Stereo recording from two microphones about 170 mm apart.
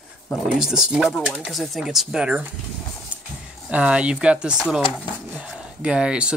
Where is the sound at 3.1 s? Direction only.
10° right (ahead or behind).